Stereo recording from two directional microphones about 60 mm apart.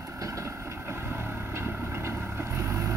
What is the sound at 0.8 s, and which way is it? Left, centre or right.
Vehicle, right.